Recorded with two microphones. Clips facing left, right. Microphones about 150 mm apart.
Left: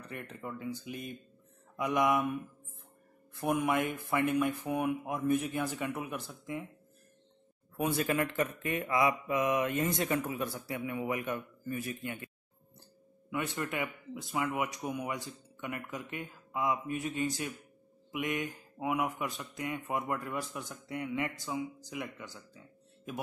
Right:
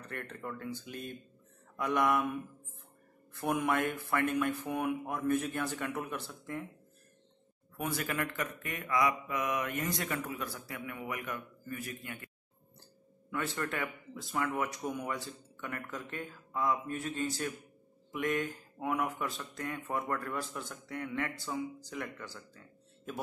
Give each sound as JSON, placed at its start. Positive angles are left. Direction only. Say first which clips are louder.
{"t": 0.0, "sound": "a man's voice", "louder": "even", "side_deg": 10}
{"t": 3.3, "sound": "a man's voice", "louder": "left 1 dB", "side_deg": 10}
{"t": 7.7, "sound": "speech", "louder": "left 5 dB", "side_deg": 25}
{"t": 13.3, "sound": "a man's voice", "louder": "left 1 dB", "side_deg": 15}
{"t": 22.5, "sound": "music", "louder": "left 1 dB", "side_deg": 10}